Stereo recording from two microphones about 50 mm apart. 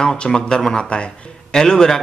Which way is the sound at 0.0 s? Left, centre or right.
Centre.